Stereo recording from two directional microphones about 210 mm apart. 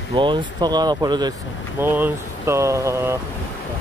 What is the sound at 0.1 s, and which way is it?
Speech, 20° right (ahead or behind).